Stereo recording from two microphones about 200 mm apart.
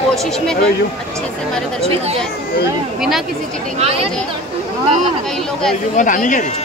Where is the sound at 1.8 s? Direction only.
30° right (ahead or behind).